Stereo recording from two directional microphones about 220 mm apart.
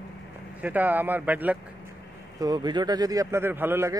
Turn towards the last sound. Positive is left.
turn(degrees=-10)  # may be behind; listen again after turning